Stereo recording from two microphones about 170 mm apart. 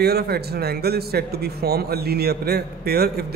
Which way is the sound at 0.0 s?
65° right (ahead or behind).